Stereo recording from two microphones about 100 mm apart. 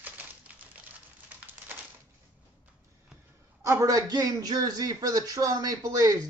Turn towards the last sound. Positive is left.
turn(degrees=-40)  # may be behind; listen again after turning